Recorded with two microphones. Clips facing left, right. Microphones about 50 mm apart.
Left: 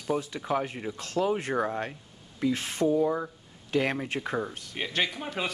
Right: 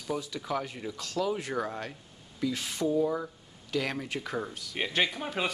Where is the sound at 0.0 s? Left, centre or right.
Left.